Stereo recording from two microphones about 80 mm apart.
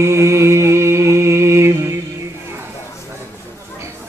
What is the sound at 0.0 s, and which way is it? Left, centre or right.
Mantra, right.